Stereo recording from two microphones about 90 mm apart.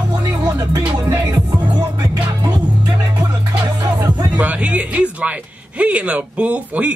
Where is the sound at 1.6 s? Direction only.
55° right (ahead or behind).